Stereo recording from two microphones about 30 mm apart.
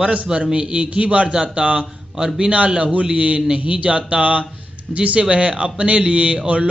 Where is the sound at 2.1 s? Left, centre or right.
Right.